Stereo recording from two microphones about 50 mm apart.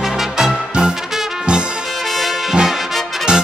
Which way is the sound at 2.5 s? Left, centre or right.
Centre.